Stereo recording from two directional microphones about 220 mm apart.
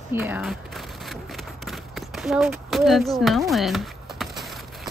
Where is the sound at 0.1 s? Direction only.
10° right (ahead or behind).